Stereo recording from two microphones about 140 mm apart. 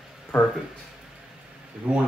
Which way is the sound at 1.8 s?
10° right (ahead or behind).